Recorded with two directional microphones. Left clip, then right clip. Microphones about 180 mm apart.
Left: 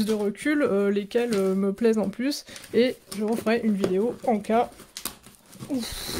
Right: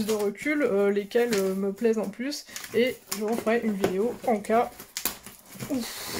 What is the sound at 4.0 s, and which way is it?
Speech, 40° left (ahead or behind).